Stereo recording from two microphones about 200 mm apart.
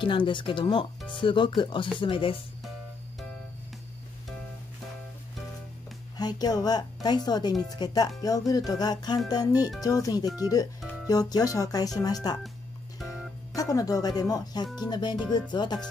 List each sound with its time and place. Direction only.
0.0 s speech: 25° left (ahead or behind)
6.1 s speech: 20° left (ahead or behind)
13.6 s speech: 15° left (ahead or behind)